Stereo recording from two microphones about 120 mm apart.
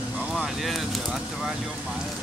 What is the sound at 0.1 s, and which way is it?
Speech, 10° right (ahead or behind).